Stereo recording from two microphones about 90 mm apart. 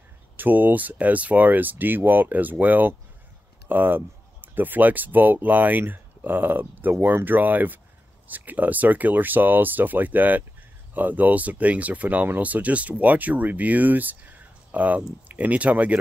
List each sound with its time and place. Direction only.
0.4 s speech: 20° right (ahead or behind)